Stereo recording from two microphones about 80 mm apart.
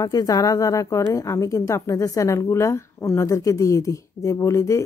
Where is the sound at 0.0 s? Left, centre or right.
Left.